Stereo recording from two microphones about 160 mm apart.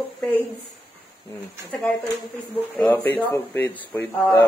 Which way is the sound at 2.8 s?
10° left (ahead or behind).